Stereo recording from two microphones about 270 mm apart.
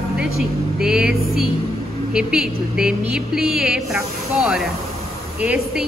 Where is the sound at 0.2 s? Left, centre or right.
Centre.